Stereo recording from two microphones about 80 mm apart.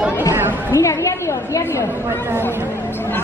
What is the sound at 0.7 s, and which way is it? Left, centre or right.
A woman's voice, left.